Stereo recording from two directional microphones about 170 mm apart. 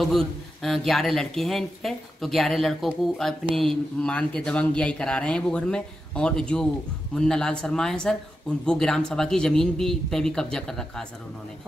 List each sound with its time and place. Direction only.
0.0 s a man's voice: centre (ahead or behind)